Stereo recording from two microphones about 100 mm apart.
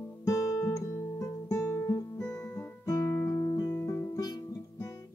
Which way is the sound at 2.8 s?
30° left (ahead or behind).